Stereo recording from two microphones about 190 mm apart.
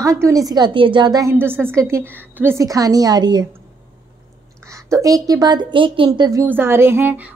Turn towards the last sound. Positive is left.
turn(degrees=-10)  # may be behind; listen again after turning